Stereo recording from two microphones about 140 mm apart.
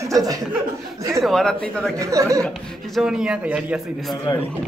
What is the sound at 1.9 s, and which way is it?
Speech, 20° right (ahead or behind).